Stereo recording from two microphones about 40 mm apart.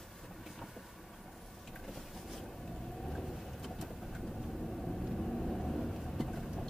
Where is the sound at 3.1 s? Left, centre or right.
Centre.